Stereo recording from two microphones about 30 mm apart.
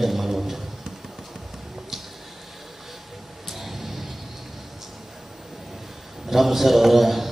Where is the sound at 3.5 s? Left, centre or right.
Centre.